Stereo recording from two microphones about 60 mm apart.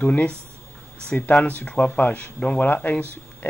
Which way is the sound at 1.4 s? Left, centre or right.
Left.